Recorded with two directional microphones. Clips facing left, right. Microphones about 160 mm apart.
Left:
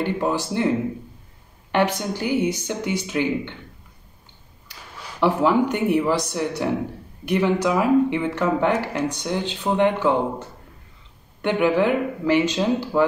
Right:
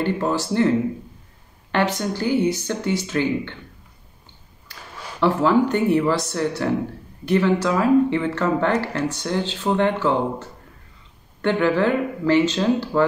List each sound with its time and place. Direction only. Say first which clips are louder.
0.0 s speech: right 1 dB; 15° left (ahead or behind)
1.7 s speech: even; 15° left (ahead or behind)
5.2 s speech: right 1 dB; 15° left (ahead or behind)
11.4 s speech: even; 15° left (ahead or behind)